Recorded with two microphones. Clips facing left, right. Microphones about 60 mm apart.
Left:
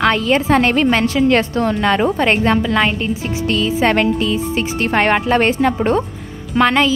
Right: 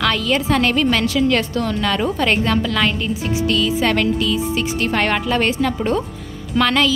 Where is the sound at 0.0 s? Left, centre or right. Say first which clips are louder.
Left 4 dB; left.